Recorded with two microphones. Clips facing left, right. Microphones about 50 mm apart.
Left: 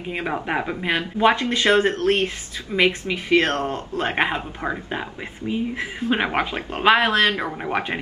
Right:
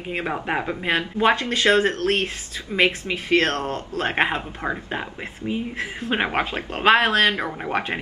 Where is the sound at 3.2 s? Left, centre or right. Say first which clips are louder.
Left 1 dB; left.